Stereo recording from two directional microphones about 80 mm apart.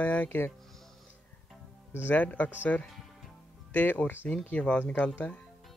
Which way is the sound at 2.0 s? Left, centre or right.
Centre.